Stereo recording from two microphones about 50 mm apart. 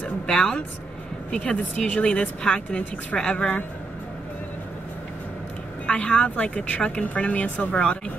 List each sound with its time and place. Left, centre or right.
0.3 s speech: centre
5.9 s speech: left